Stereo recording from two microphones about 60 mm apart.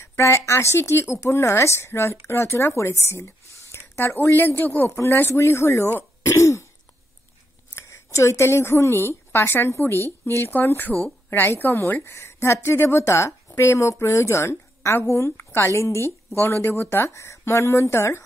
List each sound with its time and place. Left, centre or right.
0.0 s a woman's voice: left
4.9 s a woman's voice: left
6.3 s throat clearing: left
7.7 s a woman's voice: left
16.3 s a woman's voice: left